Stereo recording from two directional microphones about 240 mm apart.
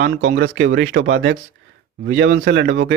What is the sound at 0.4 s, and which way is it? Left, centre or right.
Speech, right.